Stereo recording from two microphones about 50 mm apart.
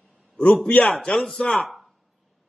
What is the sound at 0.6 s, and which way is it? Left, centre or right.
Speech, left.